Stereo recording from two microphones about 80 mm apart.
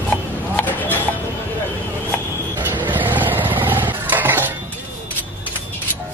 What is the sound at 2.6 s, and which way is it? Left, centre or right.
Vehicle, right.